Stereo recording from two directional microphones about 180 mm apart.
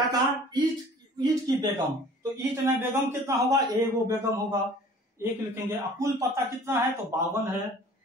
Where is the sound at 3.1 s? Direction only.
15° right (ahead or behind).